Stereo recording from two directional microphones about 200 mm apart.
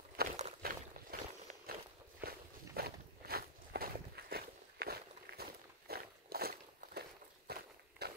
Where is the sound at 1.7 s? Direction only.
50° right (ahead or behind).